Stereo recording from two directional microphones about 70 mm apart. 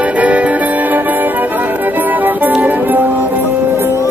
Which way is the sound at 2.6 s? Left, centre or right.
Right.